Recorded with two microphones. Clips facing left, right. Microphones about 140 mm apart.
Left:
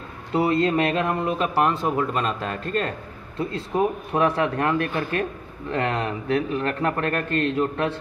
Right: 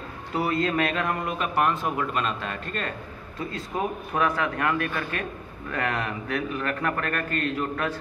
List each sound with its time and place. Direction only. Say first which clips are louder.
0.3 s a man's voice: left 5 dB; 25° left (ahead or behind)